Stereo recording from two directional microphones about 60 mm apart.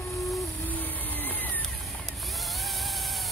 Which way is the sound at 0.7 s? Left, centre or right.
Left.